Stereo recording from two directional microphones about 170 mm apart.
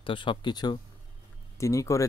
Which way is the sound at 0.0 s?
30° left (ahead or behind).